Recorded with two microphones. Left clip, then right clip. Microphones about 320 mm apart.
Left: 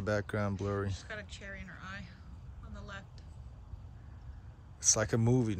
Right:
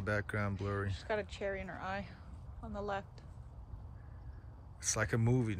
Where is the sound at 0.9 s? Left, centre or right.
Centre.